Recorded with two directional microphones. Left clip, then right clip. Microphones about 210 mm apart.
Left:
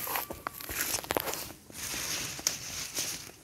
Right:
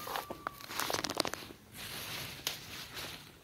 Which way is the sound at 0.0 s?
40° left (ahead or behind).